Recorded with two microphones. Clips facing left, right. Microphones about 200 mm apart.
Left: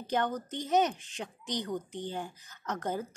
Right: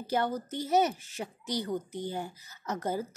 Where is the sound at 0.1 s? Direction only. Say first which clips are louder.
Right 1 dB; 5° right (ahead or behind).